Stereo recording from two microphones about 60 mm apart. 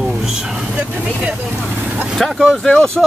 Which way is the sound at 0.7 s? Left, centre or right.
Centre.